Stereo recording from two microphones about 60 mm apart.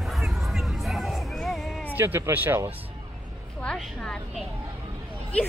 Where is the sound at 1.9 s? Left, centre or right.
Right.